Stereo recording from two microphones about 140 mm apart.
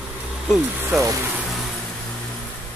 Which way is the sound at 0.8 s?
20° right (ahead or behind).